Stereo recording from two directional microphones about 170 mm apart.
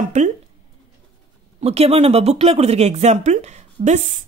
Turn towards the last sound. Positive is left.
turn(degrees=-40)  # may be behind; listen again after turning